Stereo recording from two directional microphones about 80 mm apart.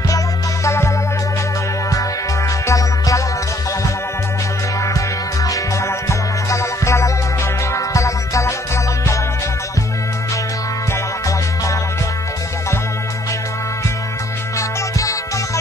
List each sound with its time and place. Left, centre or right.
5.5 s music: left
15.0 s music: left